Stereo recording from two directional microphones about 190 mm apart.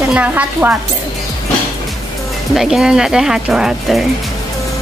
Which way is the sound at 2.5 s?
Centre (ahead or behind).